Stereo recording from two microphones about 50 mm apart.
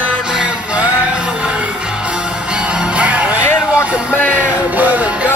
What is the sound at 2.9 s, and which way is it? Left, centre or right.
Music, right.